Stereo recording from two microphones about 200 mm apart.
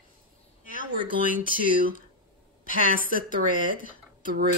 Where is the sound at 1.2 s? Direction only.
40° left (ahead or behind).